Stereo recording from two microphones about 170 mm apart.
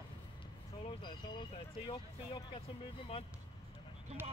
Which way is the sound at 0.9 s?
30° left (ahead or behind).